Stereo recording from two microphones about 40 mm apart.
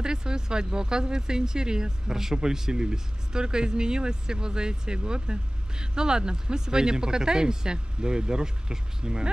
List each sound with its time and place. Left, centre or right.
0.0 s speech: centre